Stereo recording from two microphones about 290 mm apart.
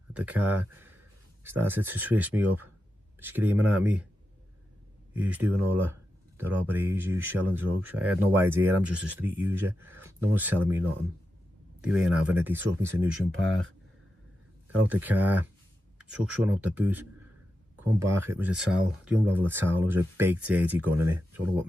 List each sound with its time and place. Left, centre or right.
0.1 s speech: centre
5.1 s speech: centre
13.4 s speech: right
14.9 s speech: centre